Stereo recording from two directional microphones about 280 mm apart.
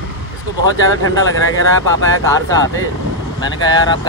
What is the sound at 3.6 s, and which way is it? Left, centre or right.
Speech, centre.